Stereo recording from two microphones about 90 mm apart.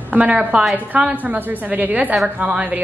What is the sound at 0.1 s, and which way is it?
A woman's voice, 15° right (ahead or behind).